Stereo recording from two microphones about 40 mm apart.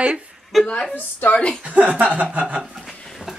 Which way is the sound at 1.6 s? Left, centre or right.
Right.